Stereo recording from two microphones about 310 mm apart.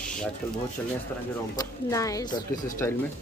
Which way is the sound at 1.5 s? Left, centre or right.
Centre.